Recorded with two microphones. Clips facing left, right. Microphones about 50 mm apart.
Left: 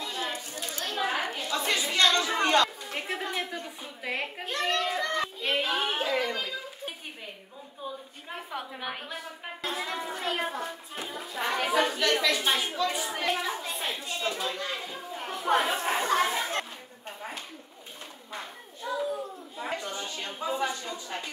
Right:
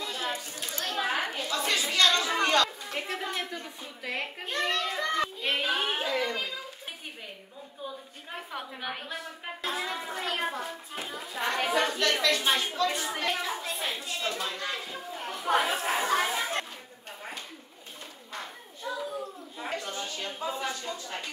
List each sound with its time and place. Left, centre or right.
0.0 s chatter: centre
0.6 s children playing: centre
1.5 s a woman's voice: left
2.9 s a child's voice: centre
6.0 s speech: centre
8.4 s a woman's voice: centre
18.3 s children playing: centre
19.7 s a sound: centre
20.4 s speech: centre